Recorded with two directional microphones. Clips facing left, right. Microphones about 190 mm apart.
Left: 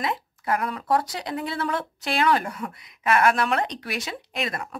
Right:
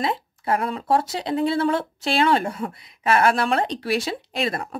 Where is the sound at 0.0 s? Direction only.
30° right (ahead or behind).